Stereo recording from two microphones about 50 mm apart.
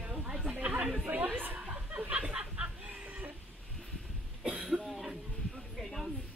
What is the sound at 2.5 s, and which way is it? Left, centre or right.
Chicken, right.